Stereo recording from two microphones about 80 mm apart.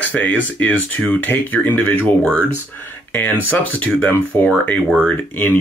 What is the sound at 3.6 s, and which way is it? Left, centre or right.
Speech, centre.